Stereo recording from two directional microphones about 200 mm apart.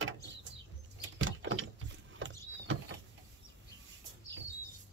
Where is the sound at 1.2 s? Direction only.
75° right (ahead or behind).